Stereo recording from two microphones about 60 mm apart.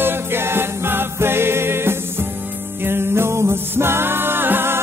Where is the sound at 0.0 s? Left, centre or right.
Right.